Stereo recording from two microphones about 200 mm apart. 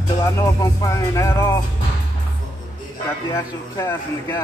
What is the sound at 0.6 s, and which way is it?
Music, 15° left (ahead or behind).